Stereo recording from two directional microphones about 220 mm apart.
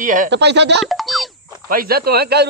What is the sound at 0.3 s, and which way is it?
Speech, 50° right (ahead or behind).